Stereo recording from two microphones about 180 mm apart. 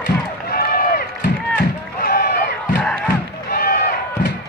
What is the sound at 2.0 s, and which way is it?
Crowd, 55° left (ahead or behind).